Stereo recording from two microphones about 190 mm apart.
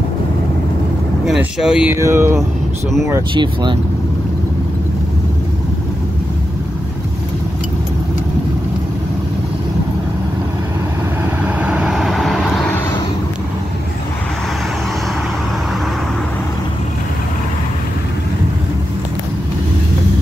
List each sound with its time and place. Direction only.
1.2 s speech: 5° right (ahead or behind)
2.0 s speech: 15° right (ahead or behind)
11.4 s vehicle: 5° right (ahead or behind)